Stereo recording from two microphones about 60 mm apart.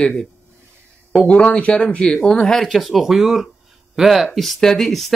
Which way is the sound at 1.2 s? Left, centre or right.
Centre.